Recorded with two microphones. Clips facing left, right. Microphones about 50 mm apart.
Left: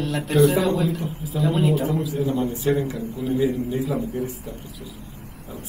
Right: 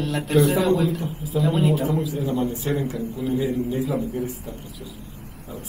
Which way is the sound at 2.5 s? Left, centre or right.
Left.